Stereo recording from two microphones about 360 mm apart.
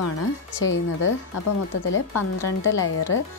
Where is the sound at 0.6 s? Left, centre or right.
Left.